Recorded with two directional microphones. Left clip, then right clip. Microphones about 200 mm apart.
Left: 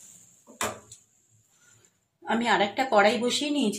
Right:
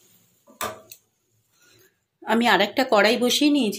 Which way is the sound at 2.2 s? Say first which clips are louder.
Right 5 dB; 55° right (ahead or behind).